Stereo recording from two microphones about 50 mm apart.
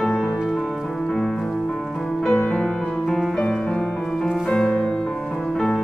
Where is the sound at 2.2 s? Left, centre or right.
Centre.